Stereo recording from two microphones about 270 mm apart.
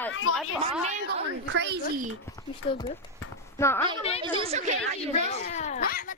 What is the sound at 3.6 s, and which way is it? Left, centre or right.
Speech, centre.